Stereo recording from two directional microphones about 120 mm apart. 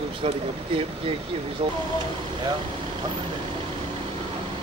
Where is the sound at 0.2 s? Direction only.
50° right (ahead or behind).